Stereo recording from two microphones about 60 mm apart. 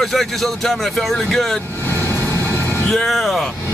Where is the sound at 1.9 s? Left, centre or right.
Left.